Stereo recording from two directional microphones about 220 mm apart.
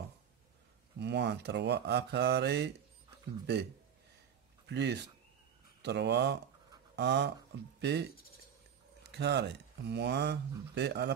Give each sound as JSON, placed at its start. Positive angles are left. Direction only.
{"t": 0.9, "sound": "speech", "side_deg": -50}
{"t": 4.6, "sound": "speech", "side_deg": -50}
{"t": 9.1, "sound": "speech", "side_deg": -50}